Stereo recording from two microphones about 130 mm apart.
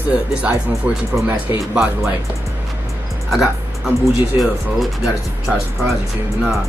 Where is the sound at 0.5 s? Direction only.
15° right (ahead or behind).